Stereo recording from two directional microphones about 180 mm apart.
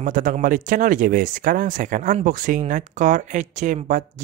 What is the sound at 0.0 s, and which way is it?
Speech, 45° right (ahead or behind).